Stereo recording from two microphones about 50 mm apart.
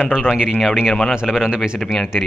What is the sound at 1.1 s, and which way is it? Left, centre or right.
Speech, centre.